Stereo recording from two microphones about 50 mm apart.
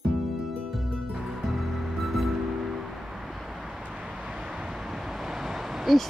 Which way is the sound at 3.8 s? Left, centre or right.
Right.